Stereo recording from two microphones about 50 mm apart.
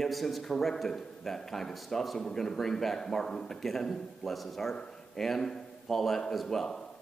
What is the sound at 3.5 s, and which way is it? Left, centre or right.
A man's voice, centre.